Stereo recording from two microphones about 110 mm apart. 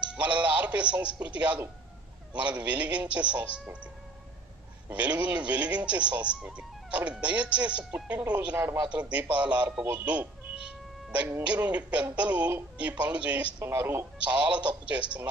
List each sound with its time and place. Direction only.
0.0 s speech: 10° right (ahead or behind)
4.8 s a man's voice: 10° right (ahead or behind)
13.7 s speech: 20° right (ahead or behind)
14.2 s speech: 10° right (ahead or behind)